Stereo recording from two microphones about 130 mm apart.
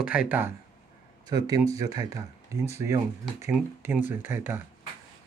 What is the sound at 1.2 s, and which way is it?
Speech, 30° right (ahead or behind).